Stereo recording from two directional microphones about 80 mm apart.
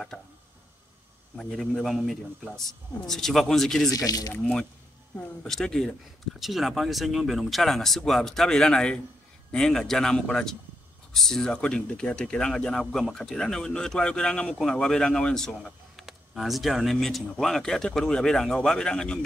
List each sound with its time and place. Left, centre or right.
1.4 s speech: centre
3.9 s speech: left
4.4 s speech: centre